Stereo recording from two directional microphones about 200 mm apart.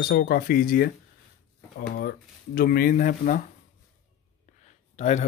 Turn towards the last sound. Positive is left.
turn(degrees=35)  # may be behind; listen again after turning